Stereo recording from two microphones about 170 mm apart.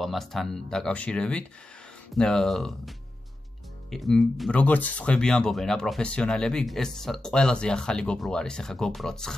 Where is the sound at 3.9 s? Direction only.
Centre (ahead or behind).